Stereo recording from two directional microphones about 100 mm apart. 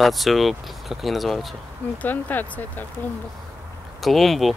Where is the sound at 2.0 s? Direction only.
15° left (ahead or behind).